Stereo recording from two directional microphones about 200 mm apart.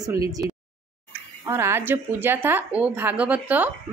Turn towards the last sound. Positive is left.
turn(degrees=-10)  # may be behind; listen again after turning